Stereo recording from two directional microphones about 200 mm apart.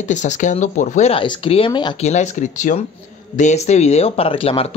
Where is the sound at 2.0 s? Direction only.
35° left (ahead or behind).